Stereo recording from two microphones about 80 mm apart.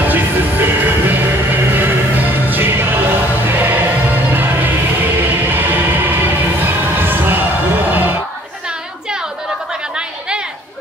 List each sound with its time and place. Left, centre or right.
0.0 s music: right